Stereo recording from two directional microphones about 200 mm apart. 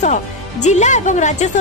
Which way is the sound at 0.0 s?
35° left (ahead or behind).